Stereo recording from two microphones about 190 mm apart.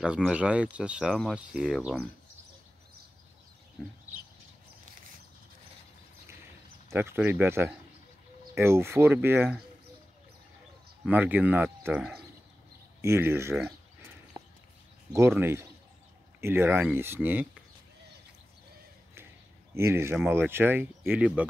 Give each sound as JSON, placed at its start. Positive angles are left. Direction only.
{"t": 0.0, "sound": "speech", "side_deg": -5}
{"t": 3.8, "sound": "speech", "side_deg": 5}
{"t": 6.9, "sound": "speech", "side_deg": -10}
{"t": 11.1, "sound": "speech", "side_deg": -10}
{"t": 14.3, "sound": "a sound", "side_deg": -20}
{"t": 15.1, "sound": "speech", "side_deg": -10}
{"t": 19.7, "sound": "speech", "side_deg": -15}